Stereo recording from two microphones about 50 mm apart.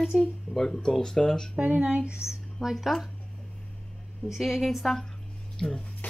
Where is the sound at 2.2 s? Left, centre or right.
Centre.